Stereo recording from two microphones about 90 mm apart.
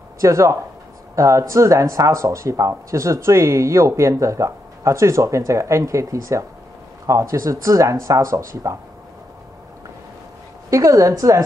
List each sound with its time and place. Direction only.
0.2 s speech: 35° right (ahead or behind)
10.7 s speech: 35° right (ahead or behind)